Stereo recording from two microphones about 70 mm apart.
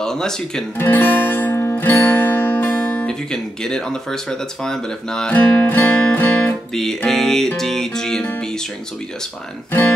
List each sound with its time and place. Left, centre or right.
0.0 s speech: centre
0.7 s music: left
3.1 s speech: centre
5.3 s music: left
6.7 s music: centre
7.1 s speech: centre
9.7 s music: left